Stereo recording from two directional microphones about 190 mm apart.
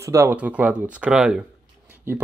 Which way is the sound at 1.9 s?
10° right (ahead or behind).